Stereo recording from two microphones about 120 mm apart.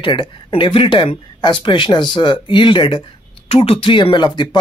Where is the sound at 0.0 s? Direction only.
45° left (ahead or behind).